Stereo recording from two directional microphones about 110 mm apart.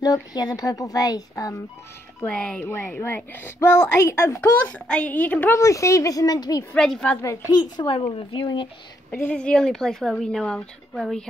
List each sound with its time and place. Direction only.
0.0 s a woman's voice: 35° left (ahead or behind)
2.2 s a woman's voice: 10° left (ahead or behind)
2.6 s a woman's voice: 20° left (ahead or behind)
4.6 s a woman's voice: 10° left (ahead or behind)
5.6 s a woman's voice: 30° left (ahead or behind)
6.7 s a woman's voice: 5° left (ahead or behind)
7.7 s speech: 50° left (ahead or behind)
9.1 s speech: 15° left (ahead or behind)